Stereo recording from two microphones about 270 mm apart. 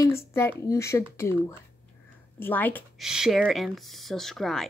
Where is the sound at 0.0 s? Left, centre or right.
Centre.